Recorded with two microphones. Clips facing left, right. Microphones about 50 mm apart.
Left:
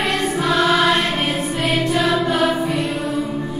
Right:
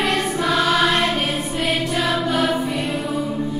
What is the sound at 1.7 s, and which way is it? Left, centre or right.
Music, centre.